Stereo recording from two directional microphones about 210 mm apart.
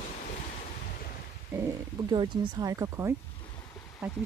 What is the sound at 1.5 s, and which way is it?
Stomach rumble, 10° right (ahead or behind).